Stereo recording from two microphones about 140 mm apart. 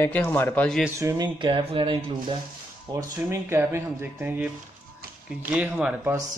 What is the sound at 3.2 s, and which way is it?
Speech, 20° right (ahead or behind).